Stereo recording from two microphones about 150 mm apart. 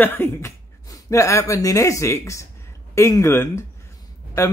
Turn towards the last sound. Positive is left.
turn(degrees=20)  # may be behind; listen again after turning